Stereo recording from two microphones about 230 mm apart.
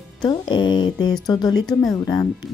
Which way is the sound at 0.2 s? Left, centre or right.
Centre.